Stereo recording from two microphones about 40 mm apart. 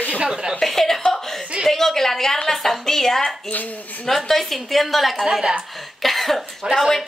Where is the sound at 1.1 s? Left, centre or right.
Centre.